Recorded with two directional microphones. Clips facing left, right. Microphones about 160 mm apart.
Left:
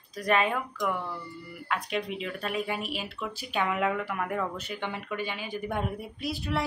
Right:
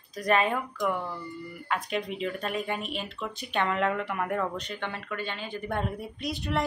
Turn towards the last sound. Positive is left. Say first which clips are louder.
# right 1 dB
turn(degrees=5)  # may be behind; listen again after turning